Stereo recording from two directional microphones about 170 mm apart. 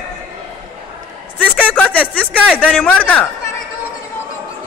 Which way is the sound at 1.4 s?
5° left (ahead or behind).